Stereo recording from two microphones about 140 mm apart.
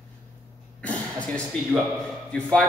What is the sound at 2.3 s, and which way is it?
Speech, 5° left (ahead or behind).